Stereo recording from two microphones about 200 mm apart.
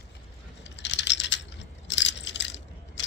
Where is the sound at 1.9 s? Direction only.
65° left (ahead or behind).